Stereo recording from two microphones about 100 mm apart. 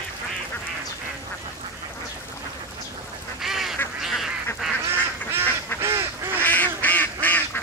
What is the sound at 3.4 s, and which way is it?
Goose, 5° right (ahead or behind).